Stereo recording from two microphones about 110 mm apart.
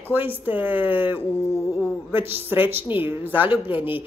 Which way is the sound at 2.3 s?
20° right (ahead or behind).